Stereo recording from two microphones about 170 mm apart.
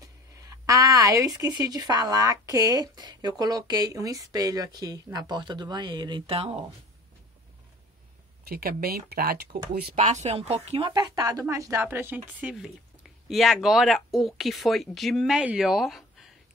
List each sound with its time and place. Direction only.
0.0 s a sound: 20° right (ahead or behind)
1.6 s speech: 20° right (ahead or behind)
8.5 s speech: 60° right (ahead or behind)
9.9 s speech: 40° right (ahead or behind); by 16.0 s centre (ahead or behind)